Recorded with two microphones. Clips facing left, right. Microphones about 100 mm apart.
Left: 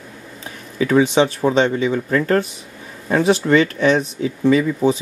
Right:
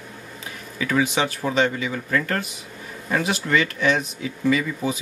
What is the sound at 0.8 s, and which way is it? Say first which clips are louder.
Speech: left 7 dB; 30° left (ahead or behind).